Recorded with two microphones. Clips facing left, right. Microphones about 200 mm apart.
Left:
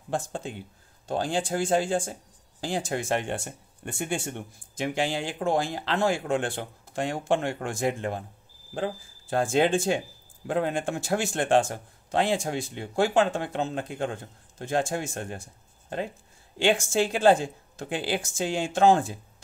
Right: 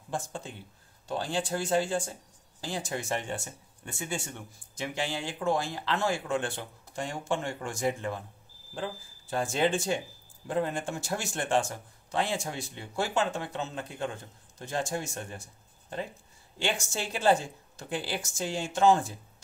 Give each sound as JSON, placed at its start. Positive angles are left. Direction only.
{"t": 0.1, "sound": "speech", "side_deg": 60}
{"t": 16.6, "sound": "speech", "side_deg": 55}
{"t": 17.7, "sound": "speech", "side_deg": 65}